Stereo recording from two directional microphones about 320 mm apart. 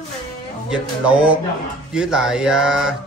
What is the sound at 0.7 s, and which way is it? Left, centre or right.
Speech, centre.